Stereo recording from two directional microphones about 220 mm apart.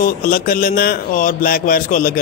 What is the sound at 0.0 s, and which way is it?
A man's voice, 40° left (ahead or behind).